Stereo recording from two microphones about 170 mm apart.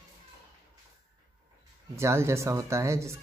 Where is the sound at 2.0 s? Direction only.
15° right (ahead or behind).